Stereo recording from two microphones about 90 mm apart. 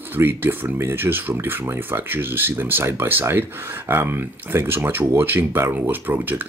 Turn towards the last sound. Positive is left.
turn(degrees=-20)  # may be behind; listen again after turning